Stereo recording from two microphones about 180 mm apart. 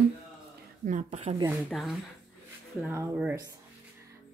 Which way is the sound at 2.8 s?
10° right (ahead or behind).